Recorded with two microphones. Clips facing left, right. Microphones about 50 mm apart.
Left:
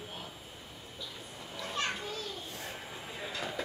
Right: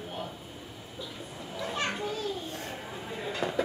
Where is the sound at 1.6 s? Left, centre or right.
Centre.